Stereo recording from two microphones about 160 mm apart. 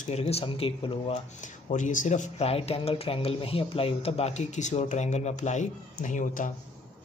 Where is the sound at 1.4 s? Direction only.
50° left (ahead or behind).